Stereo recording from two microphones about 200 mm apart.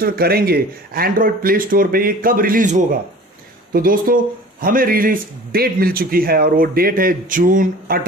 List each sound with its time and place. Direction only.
0.0 s a man's voice: 50° right (ahead or behind)